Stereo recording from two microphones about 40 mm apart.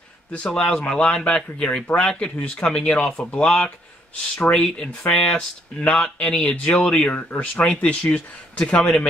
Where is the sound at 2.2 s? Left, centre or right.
Left.